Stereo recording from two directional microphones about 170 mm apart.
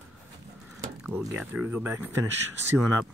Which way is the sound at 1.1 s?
15° right (ahead or behind).